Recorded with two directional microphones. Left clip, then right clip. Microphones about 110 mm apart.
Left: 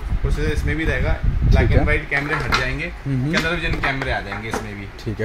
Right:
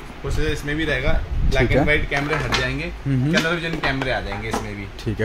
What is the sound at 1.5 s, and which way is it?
Speech, 60° right (ahead or behind).